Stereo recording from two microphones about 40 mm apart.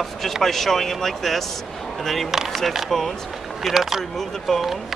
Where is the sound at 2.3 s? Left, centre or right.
Centre.